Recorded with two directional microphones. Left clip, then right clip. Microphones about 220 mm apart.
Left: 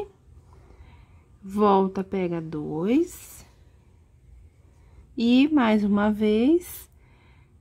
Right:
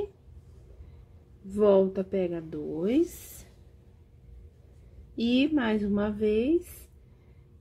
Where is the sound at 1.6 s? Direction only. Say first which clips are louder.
Left 1 dB; 35° left (ahead or behind).